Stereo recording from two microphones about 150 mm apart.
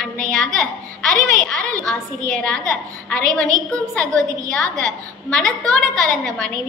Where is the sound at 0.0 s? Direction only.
5° left (ahead or behind).